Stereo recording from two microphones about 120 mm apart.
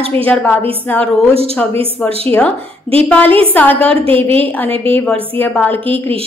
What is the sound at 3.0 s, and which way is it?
A woman's voice, 10° left (ahead or behind).